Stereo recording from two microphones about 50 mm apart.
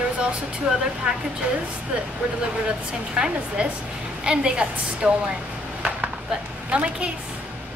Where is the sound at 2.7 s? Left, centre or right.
Centre.